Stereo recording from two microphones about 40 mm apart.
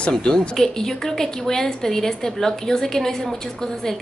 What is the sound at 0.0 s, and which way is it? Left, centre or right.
A woman's voice, centre.